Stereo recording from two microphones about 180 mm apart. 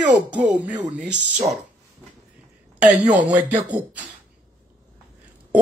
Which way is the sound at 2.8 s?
5° right (ahead or behind).